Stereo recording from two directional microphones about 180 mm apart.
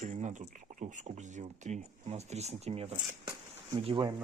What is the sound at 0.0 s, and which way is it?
Speech, 40° right (ahead or behind).